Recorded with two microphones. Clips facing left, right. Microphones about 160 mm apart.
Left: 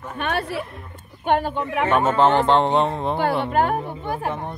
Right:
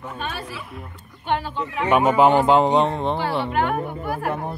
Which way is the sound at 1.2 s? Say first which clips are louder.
Left 4 dB; 50° left (ahead or behind).